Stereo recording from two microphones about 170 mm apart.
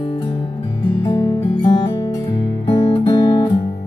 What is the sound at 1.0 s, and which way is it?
Music, 20° left (ahead or behind).